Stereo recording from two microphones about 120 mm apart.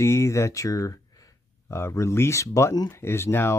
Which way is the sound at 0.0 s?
25° left (ahead or behind).